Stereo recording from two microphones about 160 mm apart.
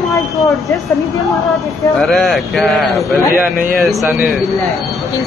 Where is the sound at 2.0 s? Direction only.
5° left (ahead or behind).